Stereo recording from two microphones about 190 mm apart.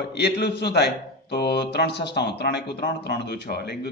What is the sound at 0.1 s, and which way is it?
Speech, 60° left (ahead or behind).